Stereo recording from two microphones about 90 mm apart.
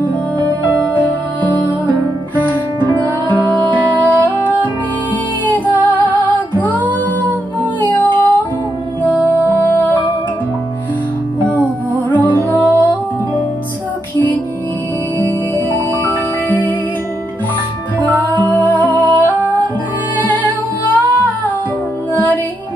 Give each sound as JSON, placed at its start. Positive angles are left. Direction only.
{"t": 0.7, "sound": "music", "side_deg": -20}
{"t": 0.9, "sound": "music", "side_deg": 20}
{"t": 7.8, "sound": "music", "side_deg": 20}
{"t": 11.4, "sound": "music", "side_deg": -20}
{"t": 12.1, "sound": "music", "side_deg": 20}
{"t": 16.4, "sound": "music", "side_deg": 20}
{"t": 17.9, "sound": "music", "side_deg": 20}
{"t": 22.1, "sound": "music", "side_deg": 20}